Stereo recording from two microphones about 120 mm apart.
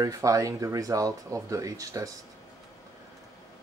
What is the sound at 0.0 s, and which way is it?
Speech, 30° right (ahead or behind).